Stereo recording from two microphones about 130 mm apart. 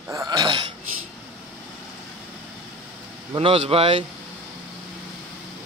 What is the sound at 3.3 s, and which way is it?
Speech, 45° right (ahead or behind).